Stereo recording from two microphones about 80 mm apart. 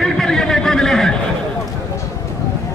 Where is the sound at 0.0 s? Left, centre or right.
Centre.